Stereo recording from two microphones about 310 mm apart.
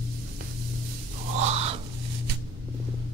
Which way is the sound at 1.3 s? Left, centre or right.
Right.